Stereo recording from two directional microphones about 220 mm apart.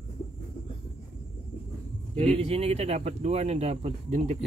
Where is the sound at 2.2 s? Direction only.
25° right (ahead or behind).